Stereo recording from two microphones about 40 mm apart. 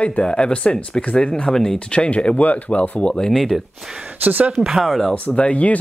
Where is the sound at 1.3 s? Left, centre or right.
Centre.